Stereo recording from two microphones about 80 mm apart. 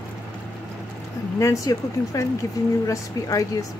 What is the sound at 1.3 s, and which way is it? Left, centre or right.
Speech, left.